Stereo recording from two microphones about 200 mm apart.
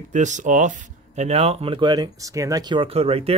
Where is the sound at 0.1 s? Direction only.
35° right (ahead or behind).